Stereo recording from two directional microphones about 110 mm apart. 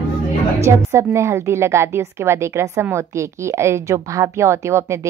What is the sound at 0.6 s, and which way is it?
A woman's voice, 25° right (ahead or behind).